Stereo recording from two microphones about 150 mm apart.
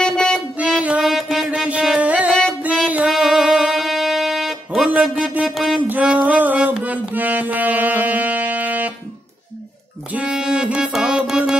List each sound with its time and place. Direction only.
0.0 s music: 5° left (ahead or behind)
0.6 s music: 5° right (ahead or behind)
10.1 s music: 5° right (ahead or behind)